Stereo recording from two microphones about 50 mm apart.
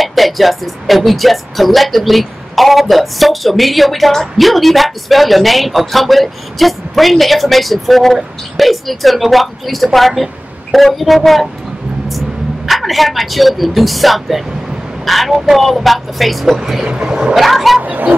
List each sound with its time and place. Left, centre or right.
0.0 s speech: centre
12.6 s speech: centre
17.4 s speech: centre
17.8 s speech: right